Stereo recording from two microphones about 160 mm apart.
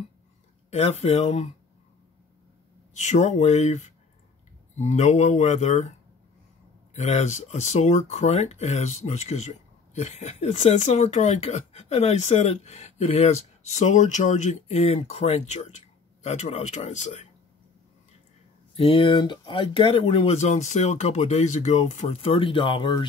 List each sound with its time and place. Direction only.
0.7 s speech: 45° left (ahead or behind)
2.9 s speech: 45° left (ahead or behind)
18.8 s speech: 35° left (ahead or behind)